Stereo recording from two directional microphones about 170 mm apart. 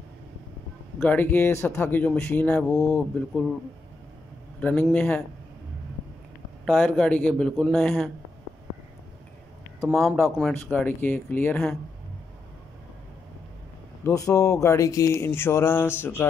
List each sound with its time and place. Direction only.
1.0 s speech: 10° left (ahead or behind)
4.6 s speech: 10° left (ahead or behind)
6.6 s speech: 5° left (ahead or behind)
9.9 s speech: 5° left (ahead or behind)
14.0 s speech: 20° left (ahead or behind)